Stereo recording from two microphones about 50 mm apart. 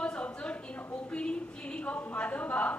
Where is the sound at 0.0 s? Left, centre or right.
Left.